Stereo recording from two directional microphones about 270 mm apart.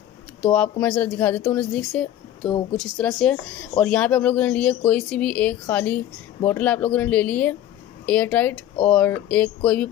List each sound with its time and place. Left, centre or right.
0.4 s speech: centre